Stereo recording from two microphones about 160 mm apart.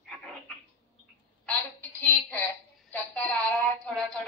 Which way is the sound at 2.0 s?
10° left (ahead or behind).